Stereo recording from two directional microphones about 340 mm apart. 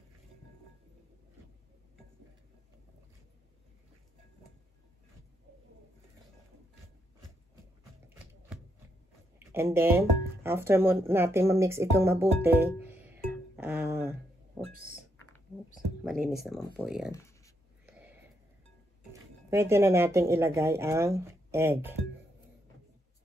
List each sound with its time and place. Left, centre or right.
9.4 s speech: centre
13.0 s music: centre
14.7 s a sound: right
15.7 s speech: centre
17.8 s a sound: centre
19.5 s speech: centre